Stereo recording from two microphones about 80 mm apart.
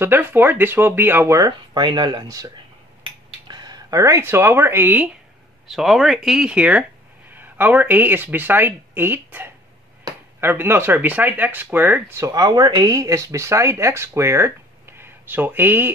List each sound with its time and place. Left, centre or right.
0.0 s speech: right
1.7 s speech: right
2.2 s speech: right
3.4 s a sound: right
3.9 s speech: right
5.7 s speech: centre; by 9.5 s right
10.1 s a sound: right
10.4 s speech: right
12.3 s speech: right